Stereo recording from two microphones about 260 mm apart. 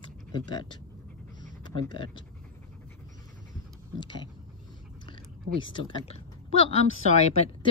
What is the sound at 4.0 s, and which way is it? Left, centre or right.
Speech, centre.